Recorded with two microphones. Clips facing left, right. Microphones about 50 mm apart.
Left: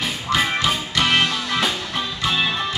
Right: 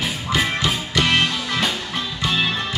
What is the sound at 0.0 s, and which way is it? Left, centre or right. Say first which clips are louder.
Music: left 1 dB; centre.